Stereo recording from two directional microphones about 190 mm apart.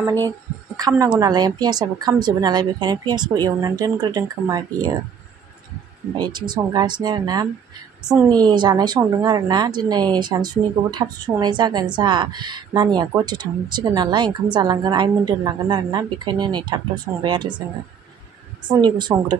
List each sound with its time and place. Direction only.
0.7 s a woman's voice: 20° right (ahead or behind)
6.1 s a woman's voice: 20° right (ahead or behind)
18.7 s a woman's voice: 25° right (ahead or behind)